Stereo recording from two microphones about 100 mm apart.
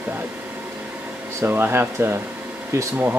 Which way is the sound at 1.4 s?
20° right (ahead or behind).